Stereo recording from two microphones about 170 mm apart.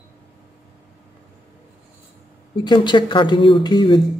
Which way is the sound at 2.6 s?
25° left (ahead or behind).